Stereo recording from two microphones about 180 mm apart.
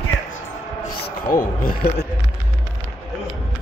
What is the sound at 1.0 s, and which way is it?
Speech, 60° left (ahead or behind).